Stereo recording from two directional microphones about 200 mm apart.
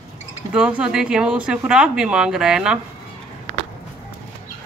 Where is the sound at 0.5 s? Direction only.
5° right (ahead or behind).